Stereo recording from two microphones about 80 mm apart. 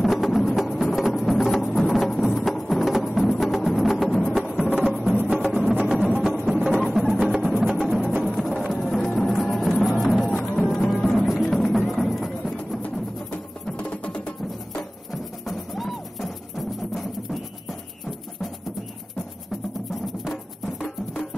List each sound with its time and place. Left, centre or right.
0.0 s music: centre
10.5 s music: centre
13.3 s music: centre
20.8 s music: left